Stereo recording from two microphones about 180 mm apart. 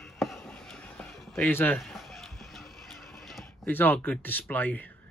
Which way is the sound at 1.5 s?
10° left (ahead or behind).